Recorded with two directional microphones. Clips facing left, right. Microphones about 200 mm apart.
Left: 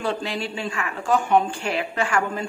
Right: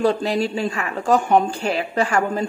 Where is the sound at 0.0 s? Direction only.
40° right (ahead or behind).